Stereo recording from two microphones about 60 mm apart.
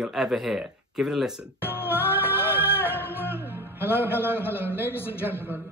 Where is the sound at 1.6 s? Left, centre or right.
Left.